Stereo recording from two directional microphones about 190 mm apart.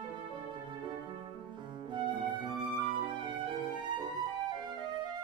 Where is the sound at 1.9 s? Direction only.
25° right (ahead or behind).